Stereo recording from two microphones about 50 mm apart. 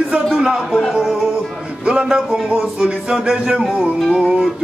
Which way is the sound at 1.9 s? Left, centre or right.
Centre.